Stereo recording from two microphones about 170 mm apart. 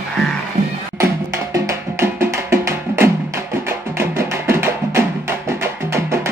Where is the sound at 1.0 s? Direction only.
15° right (ahead or behind).